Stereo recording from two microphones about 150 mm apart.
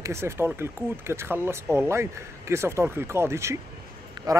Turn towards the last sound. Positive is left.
turn(degrees=-25)  # may be behind; listen again after turning